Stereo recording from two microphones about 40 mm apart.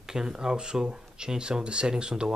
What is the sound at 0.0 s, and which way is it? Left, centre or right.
Speech, centre.